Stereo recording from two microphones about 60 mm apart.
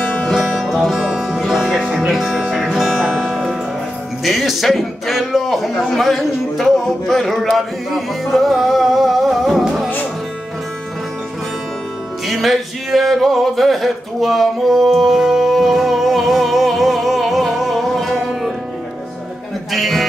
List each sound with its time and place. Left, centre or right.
0.0 s music: left
0.3 s music: centre
4.2 s speech: centre
12.3 s music: centre
19.7 s music: centre